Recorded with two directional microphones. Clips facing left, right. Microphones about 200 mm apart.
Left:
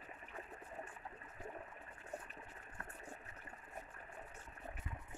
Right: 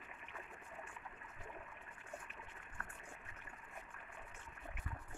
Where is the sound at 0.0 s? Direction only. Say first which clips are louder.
Left 3 dB; 35° left (ahead or behind).